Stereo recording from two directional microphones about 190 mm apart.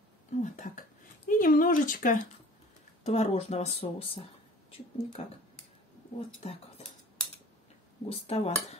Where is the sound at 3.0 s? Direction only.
35° left (ahead or behind).